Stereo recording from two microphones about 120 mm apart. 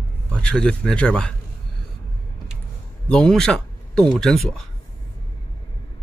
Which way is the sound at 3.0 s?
5° left (ahead or behind).